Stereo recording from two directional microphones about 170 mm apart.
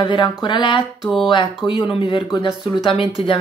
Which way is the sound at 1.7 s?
30° left (ahead or behind).